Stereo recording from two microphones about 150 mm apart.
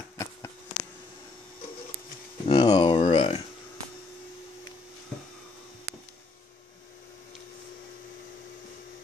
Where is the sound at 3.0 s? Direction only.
50° left (ahead or behind).